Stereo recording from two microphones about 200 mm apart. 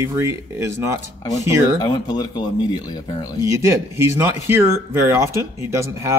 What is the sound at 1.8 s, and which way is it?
Speech, 20° left (ahead or behind).